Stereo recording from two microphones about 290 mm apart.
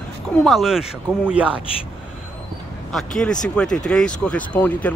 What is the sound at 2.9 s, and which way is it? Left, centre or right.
Speech, centre.